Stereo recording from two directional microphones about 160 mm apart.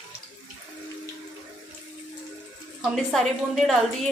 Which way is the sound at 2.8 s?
Centre (ahead or behind).